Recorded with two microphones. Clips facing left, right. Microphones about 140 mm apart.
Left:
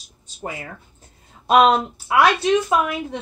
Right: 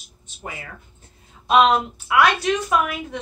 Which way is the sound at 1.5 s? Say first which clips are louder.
Left 2 dB; 40° left (ahead or behind).